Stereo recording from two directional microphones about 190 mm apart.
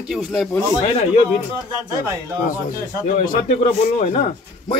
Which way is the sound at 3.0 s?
50° left (ahead or behind).